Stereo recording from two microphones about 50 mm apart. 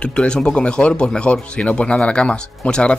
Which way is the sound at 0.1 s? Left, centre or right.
Centre.